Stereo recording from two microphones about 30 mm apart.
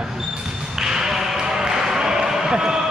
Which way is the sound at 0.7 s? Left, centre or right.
Centre.